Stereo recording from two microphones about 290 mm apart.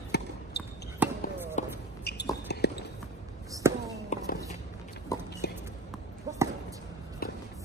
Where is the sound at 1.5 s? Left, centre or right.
Left.